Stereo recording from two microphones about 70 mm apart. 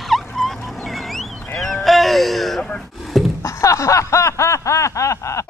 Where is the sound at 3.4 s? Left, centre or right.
Left.